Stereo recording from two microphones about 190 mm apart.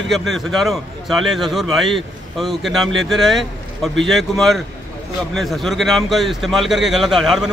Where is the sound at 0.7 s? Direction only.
Centre (ahead or behind).